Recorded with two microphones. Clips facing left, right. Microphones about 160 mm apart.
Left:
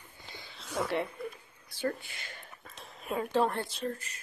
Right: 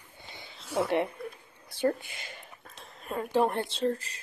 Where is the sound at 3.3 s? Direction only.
15° right (ahead or behind); by 4.2 s 30° right (ahead or behind).